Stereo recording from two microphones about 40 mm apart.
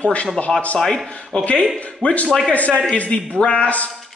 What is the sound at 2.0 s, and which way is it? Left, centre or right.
Speech, left.